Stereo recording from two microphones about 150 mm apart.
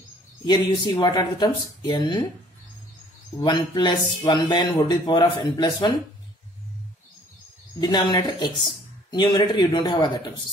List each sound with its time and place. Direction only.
0.5 s speech: 30° left (ahead or behind)
3.3 s speech: 30° left (ahead or behind)
7.8 s speech: 25° left (ahead or behind)